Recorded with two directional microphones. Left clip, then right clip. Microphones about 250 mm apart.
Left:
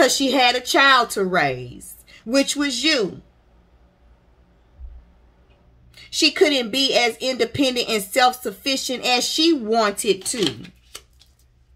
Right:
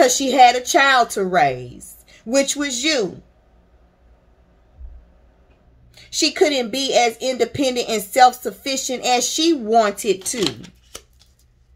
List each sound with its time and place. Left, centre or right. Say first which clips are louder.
0.0 s speech: right 4 dB; centre
5.9 s speech: even; centre